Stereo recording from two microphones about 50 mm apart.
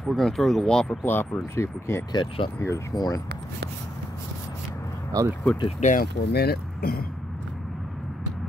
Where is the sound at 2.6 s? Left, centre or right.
Left.